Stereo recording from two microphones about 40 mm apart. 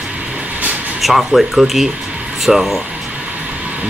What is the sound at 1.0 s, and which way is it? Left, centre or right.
Speech, centre.